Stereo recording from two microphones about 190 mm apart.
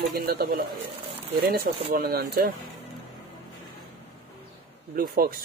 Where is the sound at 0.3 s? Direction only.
50° right (ahead or behind).